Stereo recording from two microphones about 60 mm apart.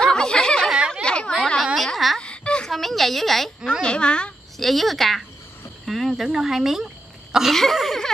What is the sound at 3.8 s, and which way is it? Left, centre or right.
Speech, centre.